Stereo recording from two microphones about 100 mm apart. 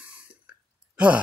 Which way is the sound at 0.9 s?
10° right (ahead or behind).